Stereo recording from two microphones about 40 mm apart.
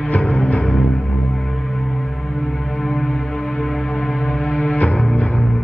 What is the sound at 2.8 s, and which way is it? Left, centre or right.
Music, centre.